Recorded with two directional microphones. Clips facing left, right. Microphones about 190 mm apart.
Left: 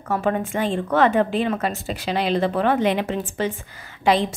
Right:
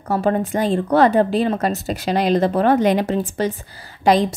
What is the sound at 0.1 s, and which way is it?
A woman's voice, 35° right (ahead or behind).